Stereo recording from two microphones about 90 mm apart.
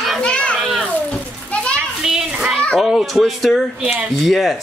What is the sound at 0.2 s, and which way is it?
Children playing, 10° left (ahead or behind).